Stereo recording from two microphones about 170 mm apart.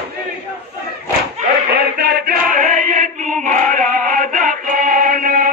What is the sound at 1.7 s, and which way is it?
Chant, 75° right (ahead or behind).